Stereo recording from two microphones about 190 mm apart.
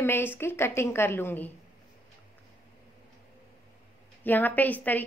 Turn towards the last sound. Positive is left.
turn(degrees=10)  # may be behind; listen again after turning